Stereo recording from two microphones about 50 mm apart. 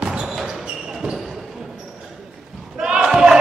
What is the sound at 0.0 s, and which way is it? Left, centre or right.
Basketball bounce, centre.